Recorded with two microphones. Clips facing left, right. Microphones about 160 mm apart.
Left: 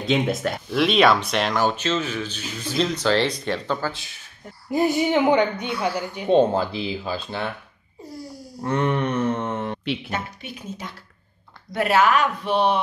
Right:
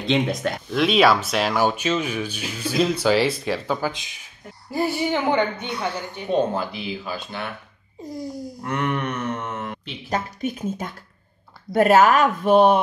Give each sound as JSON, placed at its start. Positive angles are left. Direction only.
{"t": 0.0, "sound": "speech", "side_deg": 0}
{"t": 4.6, "sound": "speech", "side_deg": 20}
{"t": 5.6, "sound": "a woman's voice", "side_deg": -20}
{"t": 6.2, "sound": "speech", "side_deg": 30}
{"t": 8.5, "sound": "mantra", "side_deg": 30}
{"t": 10.0, "sound": "speech", "side_deg": -40}